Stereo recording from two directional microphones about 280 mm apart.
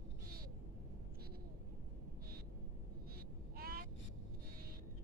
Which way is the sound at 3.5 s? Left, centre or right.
Right.